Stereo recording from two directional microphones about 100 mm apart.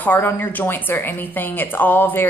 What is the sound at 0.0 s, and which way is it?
Speech, 20° left (ahead or behind).